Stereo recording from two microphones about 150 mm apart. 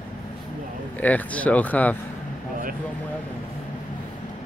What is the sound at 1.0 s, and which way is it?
Speech, 10° left (ahead or behind).